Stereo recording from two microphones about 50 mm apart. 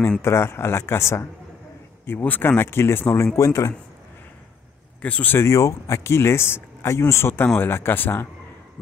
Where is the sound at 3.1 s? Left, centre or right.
Left.